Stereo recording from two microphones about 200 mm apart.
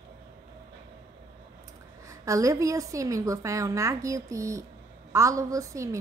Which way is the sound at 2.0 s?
15° right (ahead or behind).